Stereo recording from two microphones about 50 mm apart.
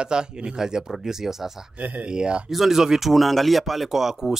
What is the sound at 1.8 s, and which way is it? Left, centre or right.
Speech, right.